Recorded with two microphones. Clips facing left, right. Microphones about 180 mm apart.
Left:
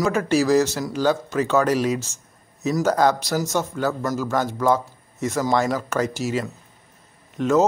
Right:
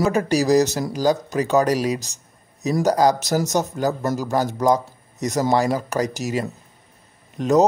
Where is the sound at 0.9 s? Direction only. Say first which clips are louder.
Right 1 dB; 35° right (ahead or behind).